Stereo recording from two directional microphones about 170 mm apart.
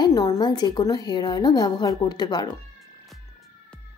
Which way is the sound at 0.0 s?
20° left (ahead or behind).